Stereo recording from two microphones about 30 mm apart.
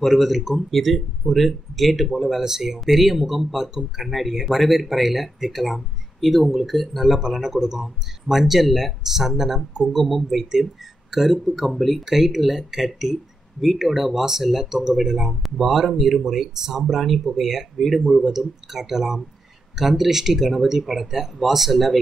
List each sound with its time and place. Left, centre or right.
0.0 s speech: centre
2.4 s speech: centre